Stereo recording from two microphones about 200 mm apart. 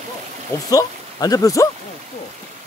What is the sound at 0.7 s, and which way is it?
Speech, 20° left (ahead or behind).